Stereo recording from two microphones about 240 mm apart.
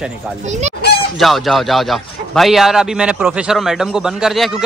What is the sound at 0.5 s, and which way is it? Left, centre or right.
Speech, right.